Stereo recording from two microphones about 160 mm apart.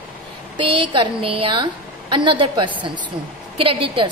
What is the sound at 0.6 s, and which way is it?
A woman's voice, 35° right (ahead or behind).